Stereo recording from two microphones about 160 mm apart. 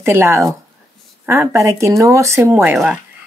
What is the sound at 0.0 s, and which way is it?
Speech, 15° right (ahead or behind).